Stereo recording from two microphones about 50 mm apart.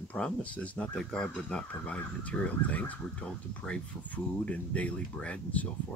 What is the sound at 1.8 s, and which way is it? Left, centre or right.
Speech, left.